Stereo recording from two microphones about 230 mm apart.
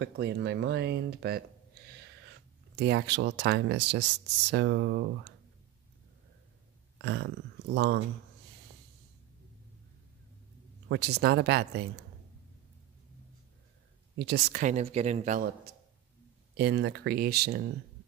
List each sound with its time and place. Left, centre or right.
0.0 s speech: right
2.7 s speech: right
7.0 s speech: right
10.9 s speech: right
14.1 s speech: right